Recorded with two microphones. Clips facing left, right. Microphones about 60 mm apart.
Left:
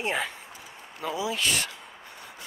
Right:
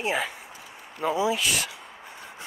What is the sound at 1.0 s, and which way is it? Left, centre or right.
Speech, right.